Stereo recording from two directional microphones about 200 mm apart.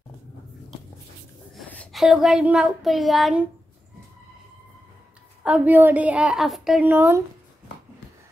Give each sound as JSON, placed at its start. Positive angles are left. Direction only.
{"t": 1.5, "sound": "child singing", "side_deg": 5}
{"t": 5.4, "sound": "a woman's voice", "side_deg": -5}